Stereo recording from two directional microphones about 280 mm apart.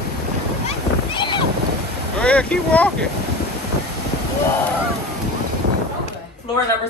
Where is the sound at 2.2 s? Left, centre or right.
Centre.